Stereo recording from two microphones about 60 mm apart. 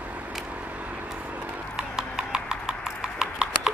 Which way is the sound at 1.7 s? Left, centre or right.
Centre.